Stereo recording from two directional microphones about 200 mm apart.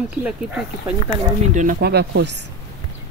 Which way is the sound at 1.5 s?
40° right (ahead or behind).